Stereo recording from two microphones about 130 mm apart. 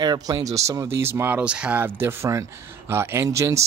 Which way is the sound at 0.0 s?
30° right (ahead or behind).